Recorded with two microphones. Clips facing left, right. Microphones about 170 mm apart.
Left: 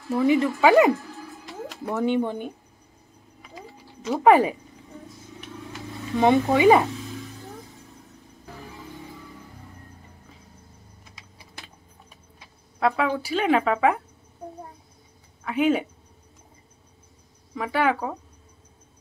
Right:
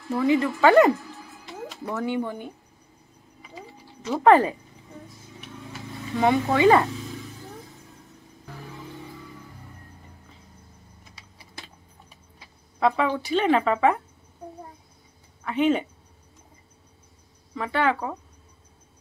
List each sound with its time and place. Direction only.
0.3 s speech: 15° left (ahead or behind)
1.9 s speech: 20° left (ahead or behind)
4.1 s speech: 10° left (ahead or behind)
6.2 s speech: 15° left (ahead or behind)
12.7 s speech: centre (ahead or behind)
15.4 s speech: 5° left (ahead or behind)
17.6 s speech: 10° left (ahead or behind)